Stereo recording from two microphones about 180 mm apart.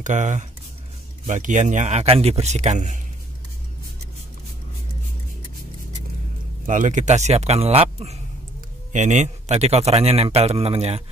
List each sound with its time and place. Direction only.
0.0 s a man's voice: 45° right (ahead or behind)
6.6 s a man's voice: 45° right (ahead or behind)